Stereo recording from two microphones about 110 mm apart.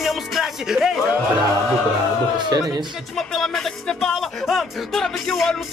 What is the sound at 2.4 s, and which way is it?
Speech, 40° right (ahead or behind).